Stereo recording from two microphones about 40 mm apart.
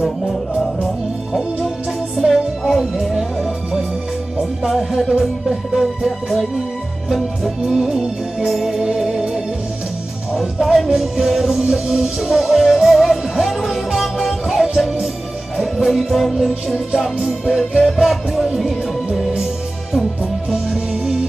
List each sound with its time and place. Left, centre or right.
2.1 s music: centre
11.0 s music: centre
20.7 s music: centre